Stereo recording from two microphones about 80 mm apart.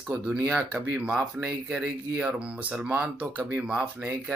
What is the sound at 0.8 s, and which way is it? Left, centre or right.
Speech, centre.